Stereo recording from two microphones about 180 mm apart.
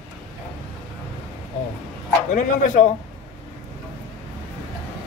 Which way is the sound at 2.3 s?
40° left (ahead or behind).